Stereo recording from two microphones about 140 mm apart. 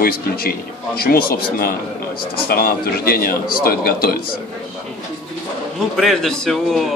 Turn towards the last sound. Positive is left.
turn(degrees=0)  # may be behind; listen again after turning